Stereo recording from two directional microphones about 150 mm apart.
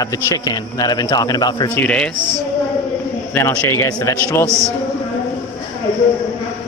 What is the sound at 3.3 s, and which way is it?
Speech, 15° left (ahead or behind).